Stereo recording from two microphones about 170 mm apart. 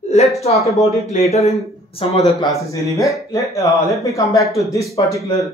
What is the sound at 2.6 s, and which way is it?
Speech, 20° left (ahead or behind).